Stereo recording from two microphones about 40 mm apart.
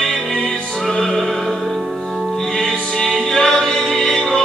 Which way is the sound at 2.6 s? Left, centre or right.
Centre.